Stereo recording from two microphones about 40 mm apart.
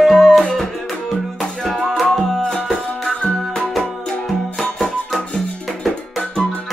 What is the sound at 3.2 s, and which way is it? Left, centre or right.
Music, centre.